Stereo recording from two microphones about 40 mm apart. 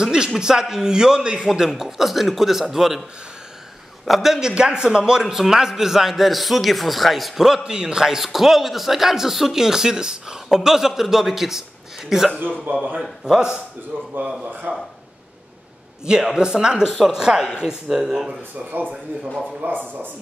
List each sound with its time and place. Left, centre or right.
0.0 s speech: centre
1.7 s a man's voice: centre
4.1 s a man's voice: centre
4.4 s a man's voice: right; by 7.4 s centre
7.4 s a man's voice: centre
12.7 s a man's voice: right
13.0 s speech: centre
13.9 s speech: right
14.7 s speech: right
16.3 s speech: right
18.6 s speech: right
19.6 s speech: right